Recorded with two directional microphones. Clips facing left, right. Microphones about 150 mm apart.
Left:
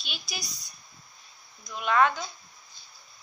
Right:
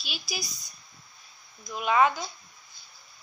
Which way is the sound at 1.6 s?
5° right (ahead or behind).